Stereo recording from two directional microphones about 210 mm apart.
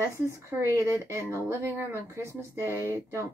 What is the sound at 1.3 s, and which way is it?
Speech, 10° right (ahead or behind).